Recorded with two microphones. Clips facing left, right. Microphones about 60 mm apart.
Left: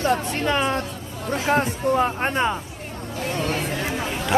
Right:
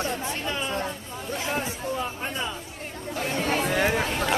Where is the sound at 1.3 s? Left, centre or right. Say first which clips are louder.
Left 8 dB; left.